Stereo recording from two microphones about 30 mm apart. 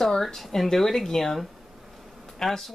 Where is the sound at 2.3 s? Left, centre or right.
Centre.